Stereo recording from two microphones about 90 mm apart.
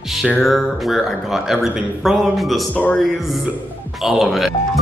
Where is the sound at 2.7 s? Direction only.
20° left (ahead or behind).